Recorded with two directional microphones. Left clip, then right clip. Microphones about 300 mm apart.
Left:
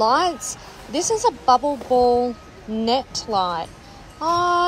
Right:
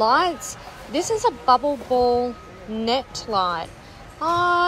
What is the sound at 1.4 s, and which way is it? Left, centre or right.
A child's voice, centre.